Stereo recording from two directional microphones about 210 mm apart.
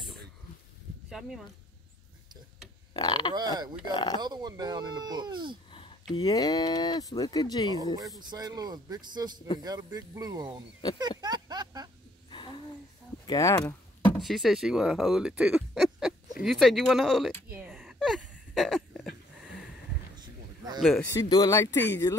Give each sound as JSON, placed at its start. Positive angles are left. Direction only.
{"t": 2.9, "sound": "frog", "side_deg": 20}
{"t": 3.3, "sound": "speech", "side_deg": -20}
{"t": 3.9, "sound": "speech", "side_deg": 20}
{"t": 4.2, "sound": "speech", "side_deg": -20}
{"t": 6.1, "sound": "speech", "side_deg": 20}
{"t": 7.7, "sound": "speech", "side_deg": -15}
{"t": 11.0, "sound": "a sound", "side_deg": -20}
{"t": 12.3, "sound": "a sound", "side_deg": 20}
{"t": 13.3, "sound": "speech", "side_deg": 15}
{"t": 17.5, "sound": "a sound", "side_deg": -10}
{"t": 20.2, "sound": "a sound", "side_deg": -20}
{"t": 20.8, "sound": "speech", "side_deg": 0}
{"t": 21.1, "sound": "speech", "side_deg": 15}